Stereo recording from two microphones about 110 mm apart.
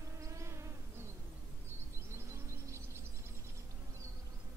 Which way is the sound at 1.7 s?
25° right (ahead or behind).